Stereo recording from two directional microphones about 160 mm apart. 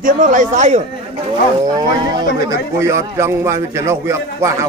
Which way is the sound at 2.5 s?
20° right (ahead or behind).